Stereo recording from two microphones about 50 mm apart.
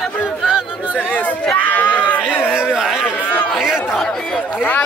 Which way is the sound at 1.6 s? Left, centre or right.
Left.